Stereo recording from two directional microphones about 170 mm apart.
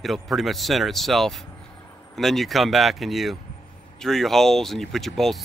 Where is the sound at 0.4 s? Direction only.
Centre (ahead or behind).